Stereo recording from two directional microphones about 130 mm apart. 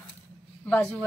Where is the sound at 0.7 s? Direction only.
5° left (ahead or behind).